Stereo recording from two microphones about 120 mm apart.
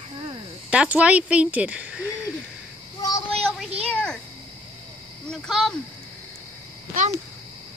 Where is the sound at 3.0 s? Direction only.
30° left (ahead or behind).